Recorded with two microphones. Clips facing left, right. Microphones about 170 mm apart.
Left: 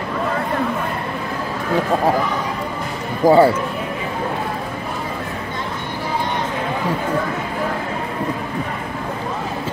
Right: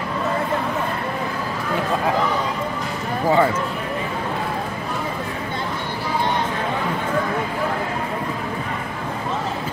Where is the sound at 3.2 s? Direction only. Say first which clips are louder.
Left 7 dB; 35° left (ahead or behind).